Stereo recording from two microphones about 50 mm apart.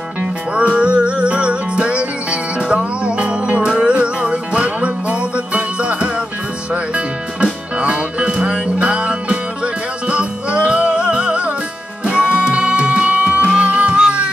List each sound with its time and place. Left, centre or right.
0.2 s music: right